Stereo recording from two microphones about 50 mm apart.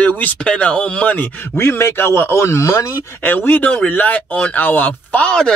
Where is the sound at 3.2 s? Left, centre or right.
Left.